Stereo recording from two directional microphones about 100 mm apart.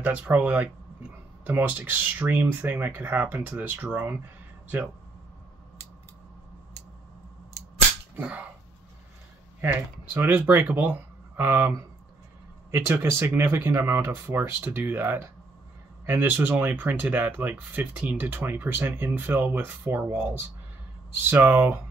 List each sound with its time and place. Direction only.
0.0 s speech: 20° right (ahead or behind)
8.2 s speech: 15° right (ahead or behind)
9.6 s speech: 20° right (ahead or behind)
12.7 s speech: 25° right (ahead or behind)